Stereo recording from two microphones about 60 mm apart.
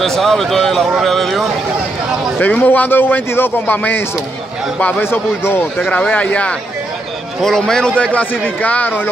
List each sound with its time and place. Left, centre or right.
0.0 s speech: centre
2.4 s a man's voice: left
5.0 s a man's voice: left
7.4 s a man's voice: centre
8.0 s speech: left